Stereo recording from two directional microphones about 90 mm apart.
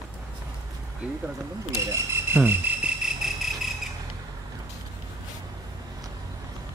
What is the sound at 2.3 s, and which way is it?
Jingle bell, 20° right (ahead or behind).